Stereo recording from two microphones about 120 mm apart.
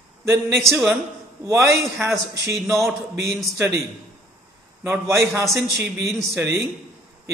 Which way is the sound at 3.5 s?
20° right (ahead or behind).